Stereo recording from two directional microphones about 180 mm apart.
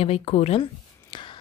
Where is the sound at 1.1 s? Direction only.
25° left (ahead or behind).